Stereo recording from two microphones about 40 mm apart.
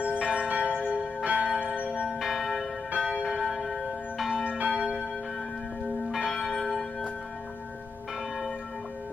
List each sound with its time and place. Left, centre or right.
0.2 s church bell: right
1.4 s church bell: left
2.1 s church bell: centre
4.5 s church bell: right
6.2 s church bell: centre